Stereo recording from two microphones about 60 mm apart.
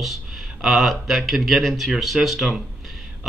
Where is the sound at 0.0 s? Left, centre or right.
Centre.